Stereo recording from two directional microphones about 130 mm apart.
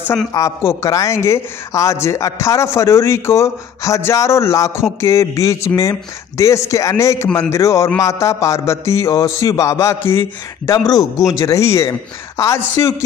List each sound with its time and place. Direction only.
0.3 s speech: 25° left (ahead or behind)